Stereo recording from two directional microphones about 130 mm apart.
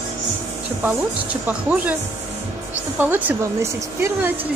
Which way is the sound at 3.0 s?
15° right (ahead or behind).